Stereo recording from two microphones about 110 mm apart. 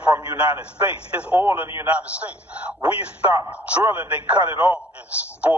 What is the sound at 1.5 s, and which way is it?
Speech, 25° right (ahead or behind).